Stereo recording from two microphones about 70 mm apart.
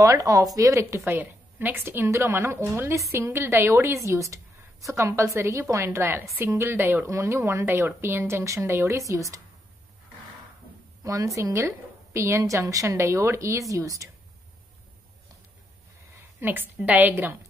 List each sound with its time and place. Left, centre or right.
0.0 s a woman's voice: right
1.1 s a woman's voice: right
1.9 s a woman's voice: right
6.8 s a woman's voice: right
7.1 s a woman's voice: right
11.1 s a woman's voice: right
16.3 s a woman's voice: right